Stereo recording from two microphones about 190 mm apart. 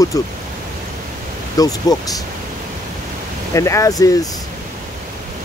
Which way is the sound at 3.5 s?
15° left (ahead or behind).